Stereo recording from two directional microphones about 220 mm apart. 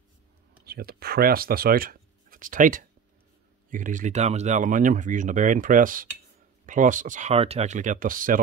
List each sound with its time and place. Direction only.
0.7 s speech: 45° right (ahead or behind)